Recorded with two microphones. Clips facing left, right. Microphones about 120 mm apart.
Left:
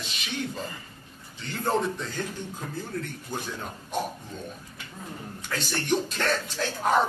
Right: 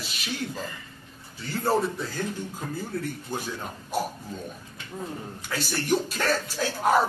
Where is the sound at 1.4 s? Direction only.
5° right (ahead or behind).